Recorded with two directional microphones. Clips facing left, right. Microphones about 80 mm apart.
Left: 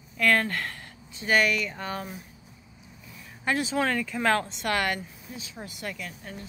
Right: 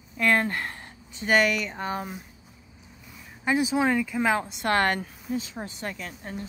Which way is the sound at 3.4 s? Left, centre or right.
Centre.